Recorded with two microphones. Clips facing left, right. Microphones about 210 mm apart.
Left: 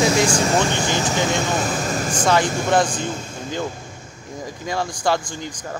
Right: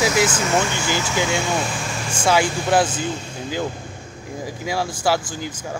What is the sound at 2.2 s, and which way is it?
Speech, 10° right (ahead or behind).